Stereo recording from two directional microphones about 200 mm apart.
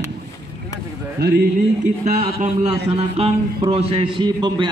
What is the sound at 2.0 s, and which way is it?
A man's voice, 40° right (ahead or behind).